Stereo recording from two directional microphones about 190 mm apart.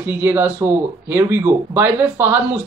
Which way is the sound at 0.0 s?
10° right (ahead or behind).